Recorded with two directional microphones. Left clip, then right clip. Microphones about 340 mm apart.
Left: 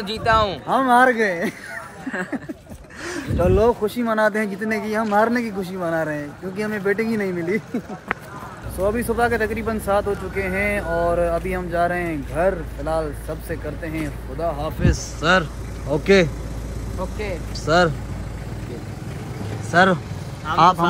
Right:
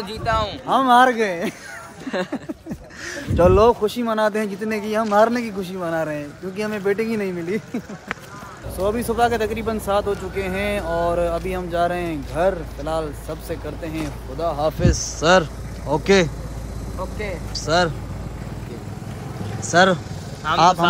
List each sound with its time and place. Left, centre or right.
0.2 s speech: left
0.7 s speech: centre
2.0 s a sound: centre
3.5 s speech: centre
8.8 s speech: centre
19.7 s speech: centre